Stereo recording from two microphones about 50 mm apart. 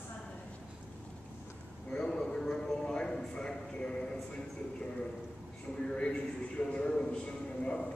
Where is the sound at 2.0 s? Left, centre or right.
Centre.